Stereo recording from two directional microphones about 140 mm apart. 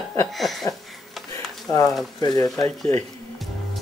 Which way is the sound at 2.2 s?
30° left (ahead or behind).